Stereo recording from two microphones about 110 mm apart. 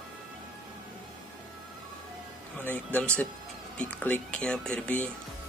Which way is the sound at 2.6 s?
15° left (ahead or behind).